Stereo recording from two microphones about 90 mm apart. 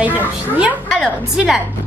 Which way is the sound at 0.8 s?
10° left (ahead or behind).